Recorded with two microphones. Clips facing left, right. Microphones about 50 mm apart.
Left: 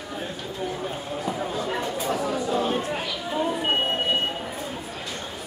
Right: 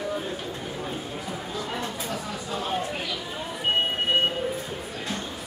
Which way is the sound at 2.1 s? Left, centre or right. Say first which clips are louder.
Left 7 dB; left.